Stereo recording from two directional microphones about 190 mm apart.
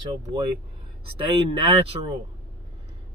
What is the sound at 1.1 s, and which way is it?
Speech, 25° right (ahead or behind).